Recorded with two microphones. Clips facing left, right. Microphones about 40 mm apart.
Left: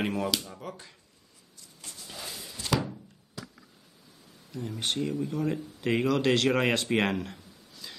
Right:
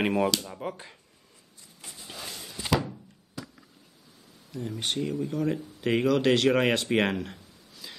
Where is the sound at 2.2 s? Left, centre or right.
Centre.